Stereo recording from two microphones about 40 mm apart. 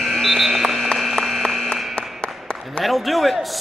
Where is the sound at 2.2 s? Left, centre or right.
Left.